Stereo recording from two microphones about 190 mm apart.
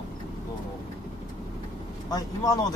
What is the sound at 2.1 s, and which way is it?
Speech, 20° left (ahead or behind).